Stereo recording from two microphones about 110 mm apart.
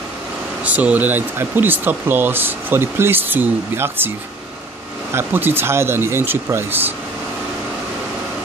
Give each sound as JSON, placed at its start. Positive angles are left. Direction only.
{"t": 0.7, "sound": "speech", "side_deg": -15}
{"t": 5.1, "sound": "speech", "side_deg": -20}